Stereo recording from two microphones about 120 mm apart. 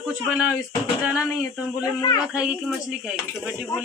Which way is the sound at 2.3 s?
10° right (ahead or behind).